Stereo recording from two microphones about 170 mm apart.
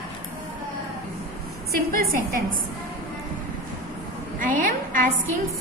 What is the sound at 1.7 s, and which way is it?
Speech, 55° right (ahead or behind).